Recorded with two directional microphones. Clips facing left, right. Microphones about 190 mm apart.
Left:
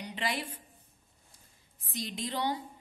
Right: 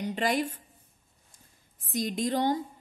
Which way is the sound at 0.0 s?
45° right (ahead or behind).